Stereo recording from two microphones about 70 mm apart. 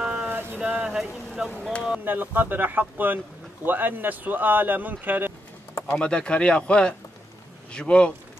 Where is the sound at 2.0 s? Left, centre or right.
Right.